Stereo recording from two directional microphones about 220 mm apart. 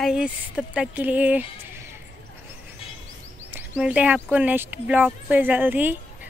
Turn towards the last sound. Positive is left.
turn(degrees=-10)  # may be behind; listen again after turning